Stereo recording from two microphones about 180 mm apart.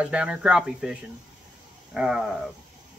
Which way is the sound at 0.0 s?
5° right (ahead or behind).